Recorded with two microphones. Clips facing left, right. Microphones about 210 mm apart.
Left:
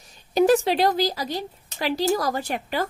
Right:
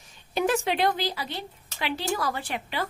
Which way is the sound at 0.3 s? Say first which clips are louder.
Left 7 dB; 40° left (ahead or behind).